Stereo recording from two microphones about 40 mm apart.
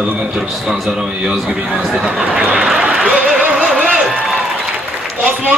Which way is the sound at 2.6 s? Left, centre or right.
Centre.